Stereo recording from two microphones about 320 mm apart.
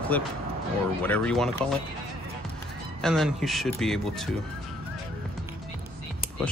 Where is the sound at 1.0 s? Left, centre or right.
Centre.